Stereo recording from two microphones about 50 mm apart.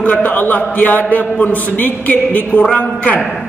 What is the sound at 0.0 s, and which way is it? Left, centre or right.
A man's voice, left.